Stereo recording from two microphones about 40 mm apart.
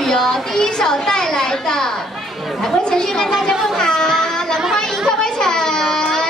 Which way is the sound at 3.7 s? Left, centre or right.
Centre.